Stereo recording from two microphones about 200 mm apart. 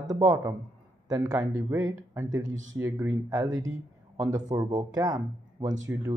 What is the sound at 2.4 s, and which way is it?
Speech, 70° right (ahead or behind).